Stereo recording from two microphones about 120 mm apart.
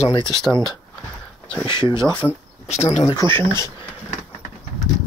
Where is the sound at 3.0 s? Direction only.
30° left (ahead or behind).